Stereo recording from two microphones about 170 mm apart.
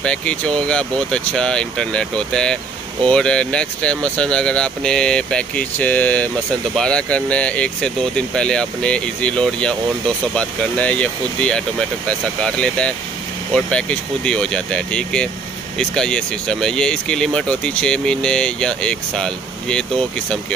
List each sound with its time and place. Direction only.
0.0 s speech: 5° left (ahead or behind)